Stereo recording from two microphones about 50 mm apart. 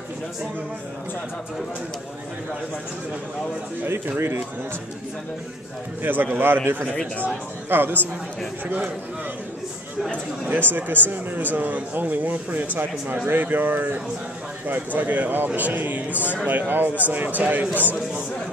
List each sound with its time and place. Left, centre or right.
6.0 s a man's voice: right
10.5 s speech: right